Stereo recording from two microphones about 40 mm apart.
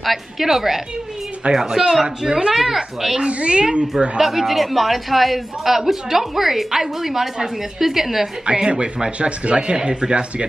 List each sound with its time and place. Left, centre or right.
0.0 s a man's voice: centre; by 2.5 s right
2.5 s a man's voice: centre
3.3 s speech: right
4.2 s a man's voice: centre
8.5 s speech: right